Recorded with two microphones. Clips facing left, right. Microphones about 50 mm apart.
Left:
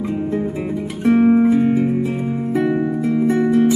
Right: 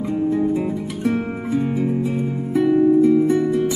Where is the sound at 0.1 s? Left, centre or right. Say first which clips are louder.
Right 6 dB; left.